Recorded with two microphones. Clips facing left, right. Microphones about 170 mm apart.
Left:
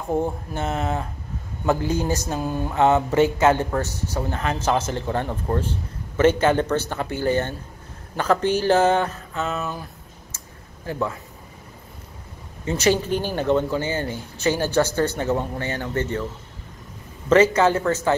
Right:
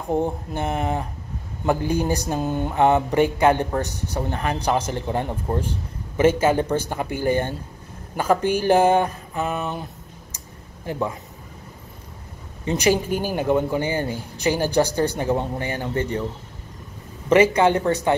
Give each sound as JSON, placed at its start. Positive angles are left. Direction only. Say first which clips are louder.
{"t": 0.1, "sound": "speech", "louder": "right 1 dB", "side_deg": -20}
{"t": 10.9, "sound": "speech", "louder": "even", "side_deg": -15}
{"t": 12.6, "sound": "speech", "louder": "even", "side_deg": -15}
{"t": 17.3, "sound": "speech", "louder": "even", "side_deg": -15}